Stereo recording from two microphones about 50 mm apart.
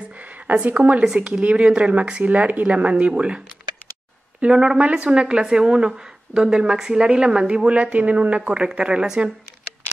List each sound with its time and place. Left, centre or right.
0.5 s speech: right
1.0 s a woman's voice: centre